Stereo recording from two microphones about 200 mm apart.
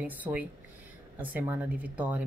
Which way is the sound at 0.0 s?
10° right (ahead or behind).